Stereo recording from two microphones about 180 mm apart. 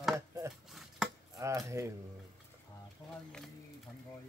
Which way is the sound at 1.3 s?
20° right (ahead or behind).